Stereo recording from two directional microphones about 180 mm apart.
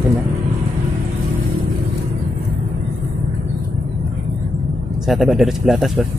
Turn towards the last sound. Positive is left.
turn(degrees=0)  # may be behind; listen again after turning